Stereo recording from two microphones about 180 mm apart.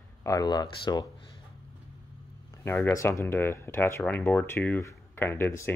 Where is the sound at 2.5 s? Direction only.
10° left (ahead or behind).